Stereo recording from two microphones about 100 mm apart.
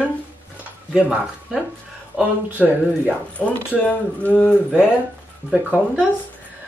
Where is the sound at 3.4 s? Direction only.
20° left (ahead or behind).